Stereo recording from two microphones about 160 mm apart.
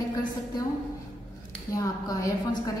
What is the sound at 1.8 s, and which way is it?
Speech, 20° left (ahead or behind).